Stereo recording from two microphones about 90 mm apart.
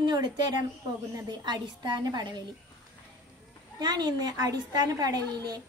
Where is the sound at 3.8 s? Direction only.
50° right (ahead or behind).